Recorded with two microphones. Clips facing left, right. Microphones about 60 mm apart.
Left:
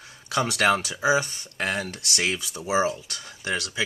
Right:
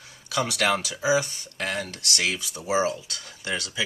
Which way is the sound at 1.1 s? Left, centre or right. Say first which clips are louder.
Even; left.